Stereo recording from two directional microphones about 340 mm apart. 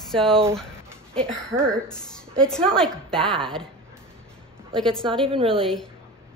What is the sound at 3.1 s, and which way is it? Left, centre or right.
Speech, centre.